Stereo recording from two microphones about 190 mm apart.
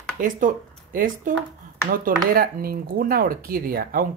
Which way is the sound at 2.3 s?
50° right (ahead or behind).